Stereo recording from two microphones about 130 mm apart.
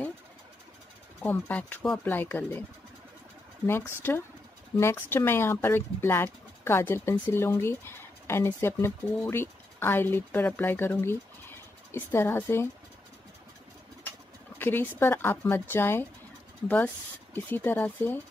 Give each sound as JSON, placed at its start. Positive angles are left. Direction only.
{"t": 1.2, "sound": "speech", "side_deg": 15}
{"t": 4.0, "sound": "speech", "side_deg": 15}
{"t": 14.6, "sound": "speech", "side_deg": 15}